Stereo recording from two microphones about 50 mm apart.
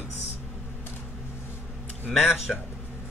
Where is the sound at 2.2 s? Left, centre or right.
Centre.